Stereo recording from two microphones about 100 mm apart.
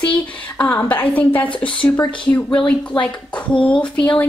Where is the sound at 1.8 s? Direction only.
55° left (ahead or behind).